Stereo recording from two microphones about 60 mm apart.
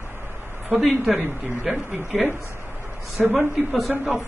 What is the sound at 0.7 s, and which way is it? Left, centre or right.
Speech, centre.